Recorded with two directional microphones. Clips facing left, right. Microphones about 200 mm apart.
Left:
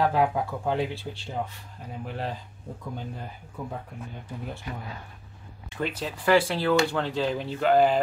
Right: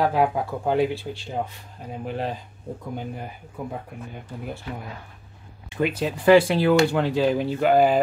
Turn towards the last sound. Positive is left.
turn(degrees=-10)  # may be behind; listen again after turning